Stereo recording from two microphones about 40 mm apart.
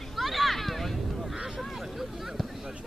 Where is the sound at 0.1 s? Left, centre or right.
Centre.